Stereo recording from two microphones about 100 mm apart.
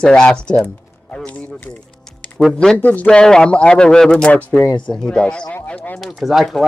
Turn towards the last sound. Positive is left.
turn(degrees=0)  # may be behind; listen again after turning